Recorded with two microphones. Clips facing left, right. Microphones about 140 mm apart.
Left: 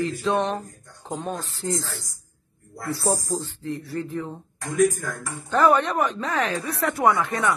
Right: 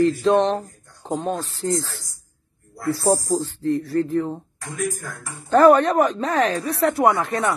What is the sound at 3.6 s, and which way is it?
Speech, 40° right (ahead or behind).